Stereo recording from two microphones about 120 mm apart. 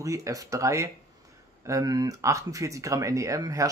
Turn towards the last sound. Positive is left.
turn(degrees=-25)  # may be behind; listen again after turning